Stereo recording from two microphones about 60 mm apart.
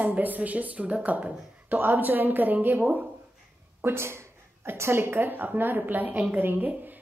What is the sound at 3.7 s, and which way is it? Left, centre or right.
A woman's voice, right.